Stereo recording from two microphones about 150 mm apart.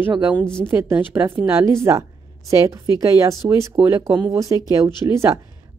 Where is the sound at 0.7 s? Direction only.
15° right (ahead or behind).